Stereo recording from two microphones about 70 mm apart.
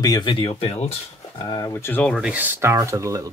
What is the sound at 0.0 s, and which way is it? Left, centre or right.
Speech, left.